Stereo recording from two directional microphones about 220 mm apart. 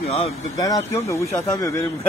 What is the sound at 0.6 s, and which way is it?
Speech, 15° left (ahead or behind).